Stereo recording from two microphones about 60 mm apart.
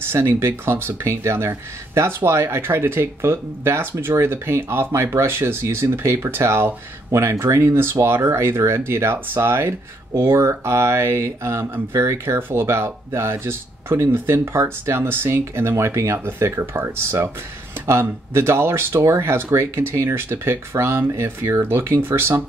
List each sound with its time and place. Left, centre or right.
0.0 s speech: right